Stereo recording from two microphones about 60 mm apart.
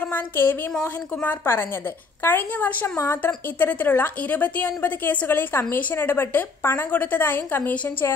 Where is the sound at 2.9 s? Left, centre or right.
Left.